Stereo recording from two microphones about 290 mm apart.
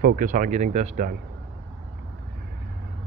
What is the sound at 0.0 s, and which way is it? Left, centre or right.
Speech, right.